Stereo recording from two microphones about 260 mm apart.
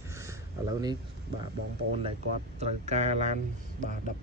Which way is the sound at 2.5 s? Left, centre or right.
Right.